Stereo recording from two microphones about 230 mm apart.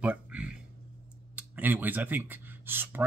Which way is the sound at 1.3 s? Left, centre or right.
Centre.